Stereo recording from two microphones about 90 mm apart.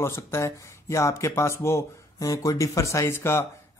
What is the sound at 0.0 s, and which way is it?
A man's voice, 30° left (ahead or behind).